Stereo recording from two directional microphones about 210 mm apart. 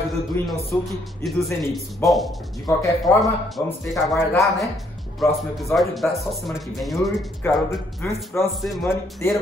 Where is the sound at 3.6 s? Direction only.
10° left (ahead or behind).